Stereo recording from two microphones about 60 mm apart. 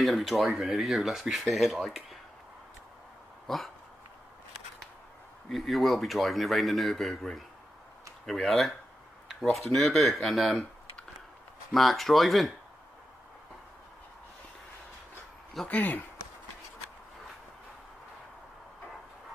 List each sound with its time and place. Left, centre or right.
0.0 s speech: centre
3.4 s dog: centre
5.5 s speech: centre
11.7 s speech: centre
15.7 s speech: left